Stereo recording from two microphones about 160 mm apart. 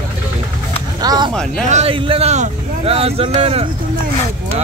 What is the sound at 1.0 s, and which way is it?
Speech, 25° right (ahead or behind).